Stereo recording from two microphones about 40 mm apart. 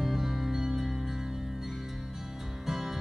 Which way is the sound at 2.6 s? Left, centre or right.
Centre.